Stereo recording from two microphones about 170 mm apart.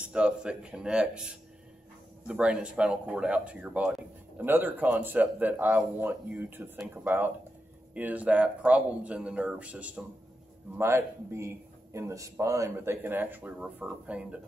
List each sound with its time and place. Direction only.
0.1 s a man's voice: 5° right (ahead or behind)